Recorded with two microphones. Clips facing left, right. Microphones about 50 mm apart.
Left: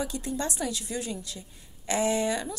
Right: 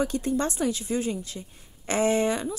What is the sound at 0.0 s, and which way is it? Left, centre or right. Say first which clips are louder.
Speech: right 6 dB; right.